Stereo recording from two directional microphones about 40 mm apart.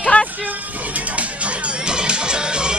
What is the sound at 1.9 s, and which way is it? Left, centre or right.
Music, right.